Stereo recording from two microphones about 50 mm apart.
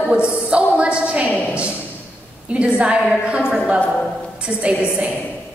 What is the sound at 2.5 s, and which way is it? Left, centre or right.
A woman's voice, right.